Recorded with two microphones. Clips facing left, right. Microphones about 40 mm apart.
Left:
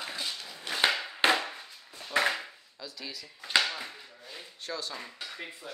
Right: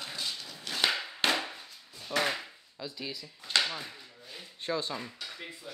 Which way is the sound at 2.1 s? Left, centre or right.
Left.